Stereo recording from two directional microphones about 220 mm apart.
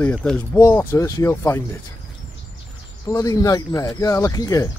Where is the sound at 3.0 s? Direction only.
15° left (ahead or behind).